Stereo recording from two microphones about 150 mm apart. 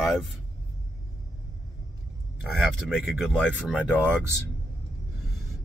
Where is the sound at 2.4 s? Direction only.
Centre (ahead or behind).